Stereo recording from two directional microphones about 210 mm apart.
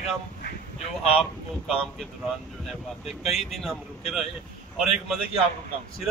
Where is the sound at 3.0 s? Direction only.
30° left (ahead or behind).